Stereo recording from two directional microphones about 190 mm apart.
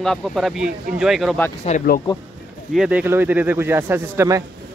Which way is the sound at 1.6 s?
45° left (ahead or behind).